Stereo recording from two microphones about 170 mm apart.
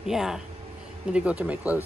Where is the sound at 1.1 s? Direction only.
5° right (ahead or behind).